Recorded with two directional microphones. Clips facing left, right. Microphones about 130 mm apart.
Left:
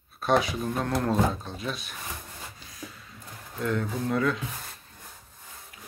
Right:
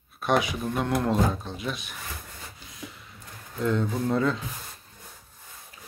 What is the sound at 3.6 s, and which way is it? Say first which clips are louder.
Speech: right 3 dB; 25° right (ahead or behind).